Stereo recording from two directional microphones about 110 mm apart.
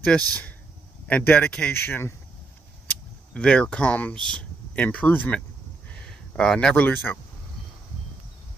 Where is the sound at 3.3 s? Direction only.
10° left (ahead or behind).